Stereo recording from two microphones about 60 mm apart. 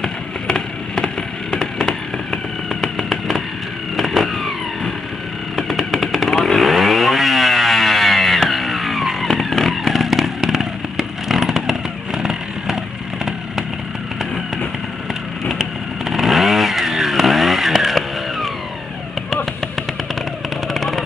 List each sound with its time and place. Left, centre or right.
0.0 s vehicle: centre
5.6 s motorcycle: centre
15.5 s chainsaw: centre
20.6 s vehicle: centre